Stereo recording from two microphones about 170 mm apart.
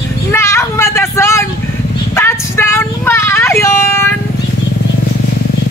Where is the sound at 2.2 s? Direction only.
15° left (ahead or behind).